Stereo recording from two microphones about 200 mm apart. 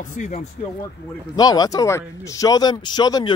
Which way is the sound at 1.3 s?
20° left (ahead or behind).